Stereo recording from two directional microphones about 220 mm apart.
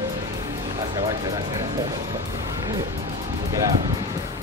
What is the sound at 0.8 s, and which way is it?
Speech, 15° right (ahead or behind).